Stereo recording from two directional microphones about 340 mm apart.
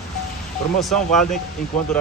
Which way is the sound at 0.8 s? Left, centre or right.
Centre.